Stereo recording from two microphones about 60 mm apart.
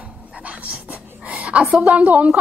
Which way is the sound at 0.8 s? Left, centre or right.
Right.